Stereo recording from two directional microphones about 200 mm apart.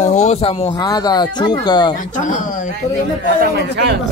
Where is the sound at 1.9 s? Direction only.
40° left (ahead or behind).